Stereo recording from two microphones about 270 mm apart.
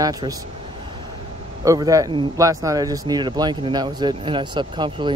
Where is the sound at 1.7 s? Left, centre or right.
Centre.